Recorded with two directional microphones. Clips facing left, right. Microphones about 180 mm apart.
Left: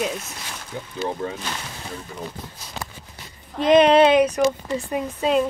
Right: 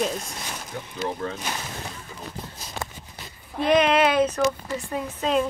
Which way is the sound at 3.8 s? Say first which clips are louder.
Left 6 dB; 30° left (ahead or behind).